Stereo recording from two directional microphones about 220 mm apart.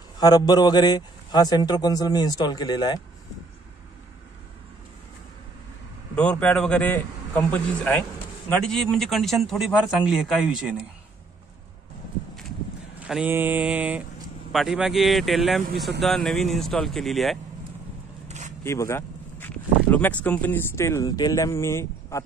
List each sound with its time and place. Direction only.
0.2 s a man's voice: 20° left (ahead or behind)
6.1 s a man's voice: 5° left (ahead or behind)
13.0 s a sound: 5° right (ahead or behind)
14.5 s a man's voice: centre (ahead or behind)
18.6 s speech: 10° left (ahead or behind)